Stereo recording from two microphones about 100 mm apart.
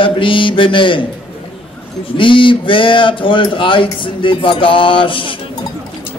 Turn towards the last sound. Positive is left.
turn(degrees=60)  # may be behind; listen again after turning